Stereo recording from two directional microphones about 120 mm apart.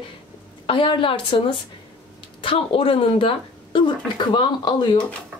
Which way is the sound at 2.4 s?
50° left (ahead or behind).